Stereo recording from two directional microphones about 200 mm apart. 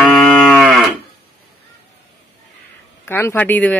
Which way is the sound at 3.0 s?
10° left (ahead or behind).